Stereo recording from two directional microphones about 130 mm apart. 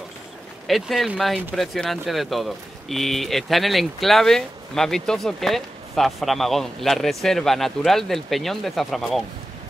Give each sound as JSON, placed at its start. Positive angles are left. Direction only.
{"t": 0.7, "sound": "speech", "side_deg": 0}